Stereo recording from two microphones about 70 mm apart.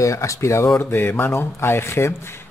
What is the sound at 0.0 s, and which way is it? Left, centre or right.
Speech, left.